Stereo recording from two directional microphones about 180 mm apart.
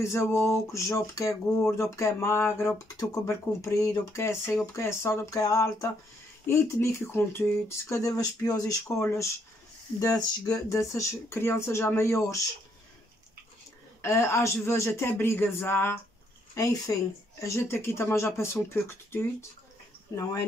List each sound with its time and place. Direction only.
0.0 s speech: 15° left (ahead or behind)
14.0 s speech: 15° left (ahead or behind)